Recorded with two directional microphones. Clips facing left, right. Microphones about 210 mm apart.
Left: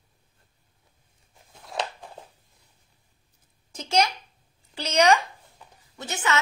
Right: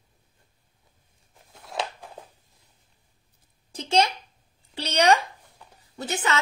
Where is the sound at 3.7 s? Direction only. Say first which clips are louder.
Right 1 dB; 30° right (ahead or behind).